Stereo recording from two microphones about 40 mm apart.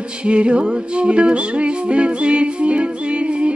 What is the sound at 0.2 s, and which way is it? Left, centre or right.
Music, right.